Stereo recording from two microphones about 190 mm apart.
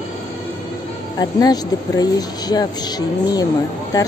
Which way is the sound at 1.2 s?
20° left (ahead or behind).